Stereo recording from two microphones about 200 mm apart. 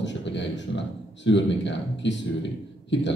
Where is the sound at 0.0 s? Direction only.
65° left (ahead or behind).